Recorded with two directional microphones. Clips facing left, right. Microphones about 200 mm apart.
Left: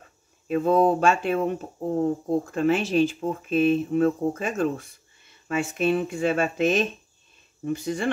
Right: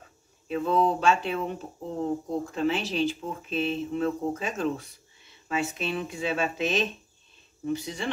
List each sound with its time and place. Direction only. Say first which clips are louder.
0.5 s speech: left 5 dB; 50° left (ahead or behind)